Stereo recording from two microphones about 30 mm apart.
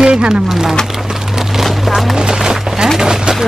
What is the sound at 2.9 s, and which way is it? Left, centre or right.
Chopping, right.